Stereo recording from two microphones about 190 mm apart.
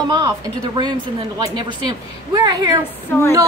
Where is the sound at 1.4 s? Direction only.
20° right (ahead or behind).